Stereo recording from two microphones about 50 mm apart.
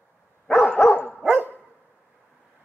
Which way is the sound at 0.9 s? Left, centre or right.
Left.